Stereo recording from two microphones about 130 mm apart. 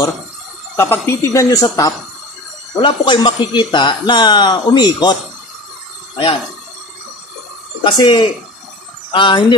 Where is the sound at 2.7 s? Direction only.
35° left (ahead or behind).